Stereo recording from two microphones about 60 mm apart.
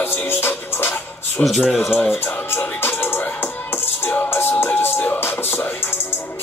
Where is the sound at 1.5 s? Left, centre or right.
Centre.